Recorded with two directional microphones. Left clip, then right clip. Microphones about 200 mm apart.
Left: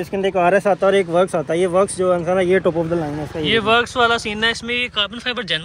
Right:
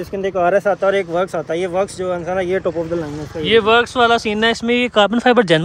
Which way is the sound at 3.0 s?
25° left (ahead or behind).